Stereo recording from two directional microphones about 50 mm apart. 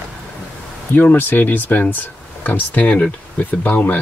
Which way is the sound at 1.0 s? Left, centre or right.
Left.